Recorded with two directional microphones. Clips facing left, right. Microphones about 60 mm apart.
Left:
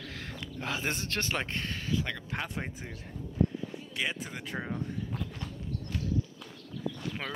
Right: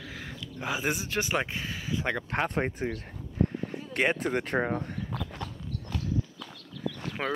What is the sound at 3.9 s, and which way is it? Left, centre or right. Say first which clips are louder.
Speech: right 9 dB; right.